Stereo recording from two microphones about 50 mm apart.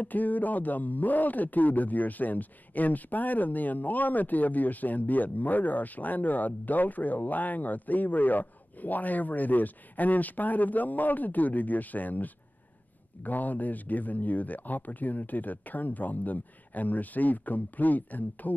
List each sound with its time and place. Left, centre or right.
0.0 s speech: left